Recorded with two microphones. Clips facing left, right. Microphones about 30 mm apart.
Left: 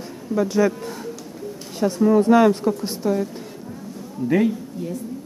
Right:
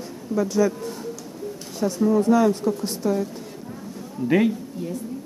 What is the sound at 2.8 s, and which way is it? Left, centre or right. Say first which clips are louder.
Speech: left 1 dB; centre.